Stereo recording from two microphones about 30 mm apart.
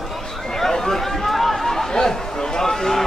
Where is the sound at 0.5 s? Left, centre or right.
Centre.